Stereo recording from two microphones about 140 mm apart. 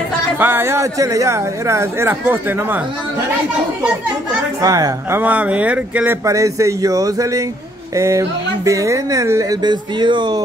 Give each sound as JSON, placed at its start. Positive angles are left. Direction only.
{"t": 0.4, "sound": "speech", "side_deg": -15}
{"t": 4.6, "sound": "speech", "side_deg": -25}
{"t": 5.2, "sound": "speech", "side_deg": -10}
{"t": 6.2, "sound": "speech", "side_deg": -25}